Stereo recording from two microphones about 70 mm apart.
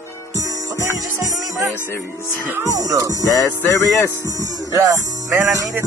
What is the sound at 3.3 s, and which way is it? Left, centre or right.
Music, left.